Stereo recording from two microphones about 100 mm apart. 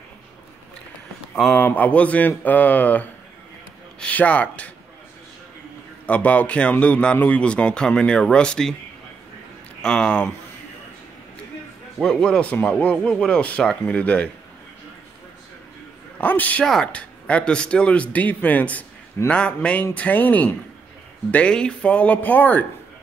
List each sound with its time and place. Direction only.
1.5 s a man's voice: 15° left (ahead or behind)
6.0 s a man's voice: 15° left (ahead or behind)
9.8 s speech: 5° left (ahead or behind)
12.0 s a man's voice: 5° left (ahead or behind)
16.2 s a man's voice: 15° left (ahead or behind)